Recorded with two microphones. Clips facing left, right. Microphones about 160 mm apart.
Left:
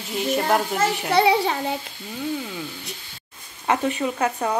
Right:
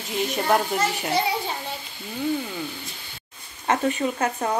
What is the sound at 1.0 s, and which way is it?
Speech, 70° left (ahead or behind).